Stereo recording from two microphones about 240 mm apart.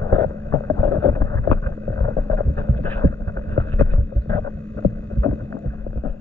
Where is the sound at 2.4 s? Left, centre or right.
Centre.